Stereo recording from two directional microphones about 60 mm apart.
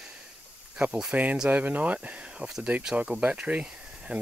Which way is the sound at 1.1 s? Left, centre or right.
Right.